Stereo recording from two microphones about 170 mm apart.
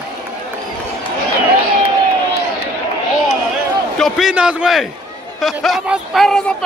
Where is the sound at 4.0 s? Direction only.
5° right (ahead or behind).